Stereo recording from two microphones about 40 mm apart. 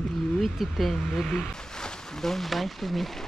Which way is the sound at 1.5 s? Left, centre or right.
Centre.